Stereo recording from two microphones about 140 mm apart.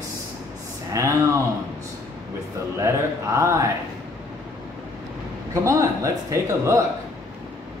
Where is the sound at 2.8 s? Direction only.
20° right (ahead or behind).